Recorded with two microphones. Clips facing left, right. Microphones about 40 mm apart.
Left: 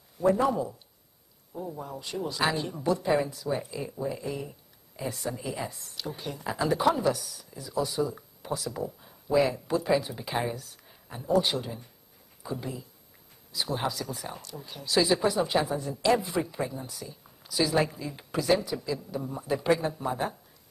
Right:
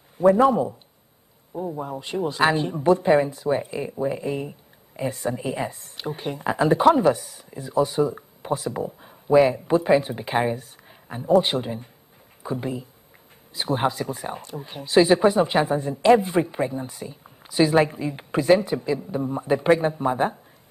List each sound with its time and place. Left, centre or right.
0.2 s speech: right